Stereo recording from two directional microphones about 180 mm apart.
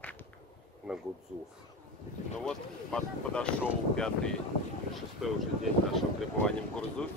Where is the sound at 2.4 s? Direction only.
5° left (ahead or behind).